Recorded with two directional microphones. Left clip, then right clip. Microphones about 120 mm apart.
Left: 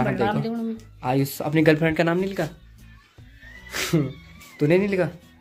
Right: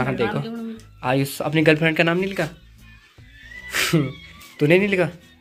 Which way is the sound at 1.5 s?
15° left (ahead or behind).